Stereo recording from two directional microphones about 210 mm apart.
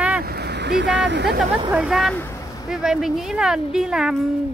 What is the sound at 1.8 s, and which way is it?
Speech, centre (ahead or behind).